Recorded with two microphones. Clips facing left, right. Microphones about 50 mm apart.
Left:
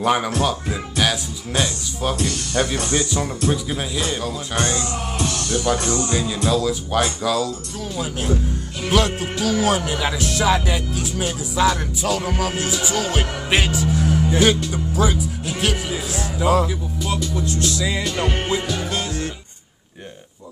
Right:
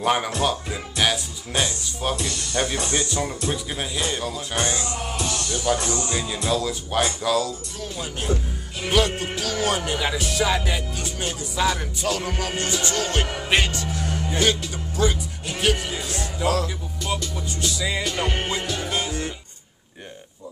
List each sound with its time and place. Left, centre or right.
0.0 s speech: centre
4.6 s music: centre
5.9 s music: left
6.1 s speech: centre
16.5 s music: centre